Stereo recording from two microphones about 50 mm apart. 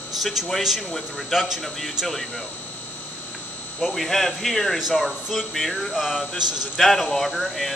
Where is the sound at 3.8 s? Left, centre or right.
Centre.